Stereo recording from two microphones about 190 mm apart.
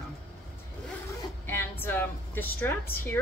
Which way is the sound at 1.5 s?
10° left (ahead or behind).